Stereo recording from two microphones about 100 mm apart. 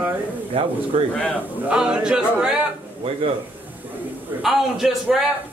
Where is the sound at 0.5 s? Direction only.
75° right (ahead or behind).